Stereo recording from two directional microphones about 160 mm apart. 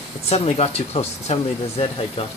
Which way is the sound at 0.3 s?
40° left (ahead or behind).